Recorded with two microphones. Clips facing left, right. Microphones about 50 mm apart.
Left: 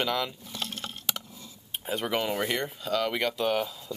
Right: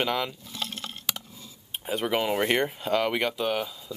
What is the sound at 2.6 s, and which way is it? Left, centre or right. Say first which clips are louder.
Speech: right 3 dB; right.